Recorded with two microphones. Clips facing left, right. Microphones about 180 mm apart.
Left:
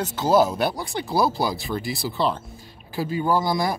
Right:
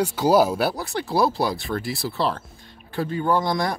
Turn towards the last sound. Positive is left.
turn(degrees=5)  # may be behind; listen again after turning